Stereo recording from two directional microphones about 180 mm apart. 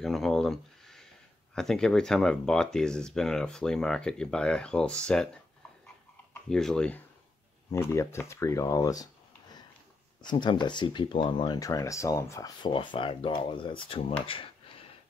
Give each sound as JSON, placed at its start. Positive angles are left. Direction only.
{"t": 0.0, "sound": "speech", "side_deg": 0}
{"t": 6.5, "sound": "speech", "side_deg": 5}
{"t": 7.7, "sound": "speech", "side_deg": 15}
{"t": 14.2, "sound": "a sound", "side_deg": 30}